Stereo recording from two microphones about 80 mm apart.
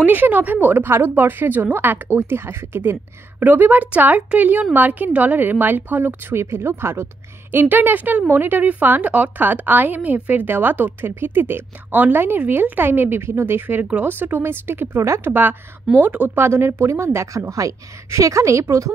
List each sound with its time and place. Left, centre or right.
0.0 s a woman's voice: right
16.3 s a woman's voice: right